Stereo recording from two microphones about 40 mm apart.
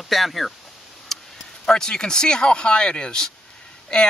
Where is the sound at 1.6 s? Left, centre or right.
Centre.